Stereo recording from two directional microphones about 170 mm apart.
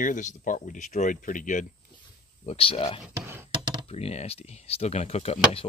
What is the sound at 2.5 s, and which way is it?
Speech, 35° left (ahead or behind).